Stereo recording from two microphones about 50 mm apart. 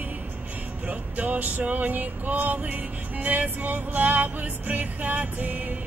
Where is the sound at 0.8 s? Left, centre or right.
Right.